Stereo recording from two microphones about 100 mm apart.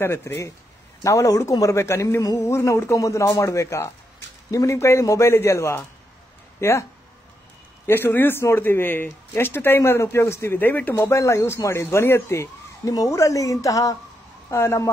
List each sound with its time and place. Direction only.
0.0 s speech: 25° left (ahead or behind)
11.0 s speech: 30° left (ahead or behind)